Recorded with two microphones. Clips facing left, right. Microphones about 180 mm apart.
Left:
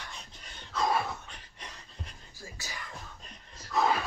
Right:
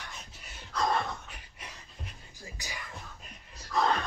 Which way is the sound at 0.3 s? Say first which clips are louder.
Even; 5° right (ahead or behind).